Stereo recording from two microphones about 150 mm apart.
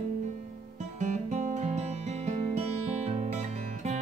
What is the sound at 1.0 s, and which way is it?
Music, 50° right (ahead or behind).